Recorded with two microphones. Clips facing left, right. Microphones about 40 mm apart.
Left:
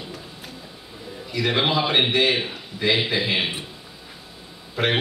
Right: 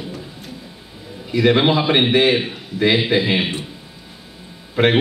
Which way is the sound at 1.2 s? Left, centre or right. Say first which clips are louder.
Right 7 dB; centre.